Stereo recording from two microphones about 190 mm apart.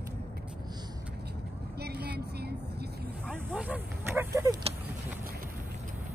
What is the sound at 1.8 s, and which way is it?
Vehicle, 60° right (ahead or behind).